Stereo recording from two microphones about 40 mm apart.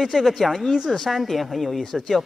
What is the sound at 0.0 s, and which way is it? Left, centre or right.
A man's voice, centre.